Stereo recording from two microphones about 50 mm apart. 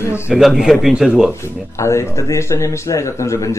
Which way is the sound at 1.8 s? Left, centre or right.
Left.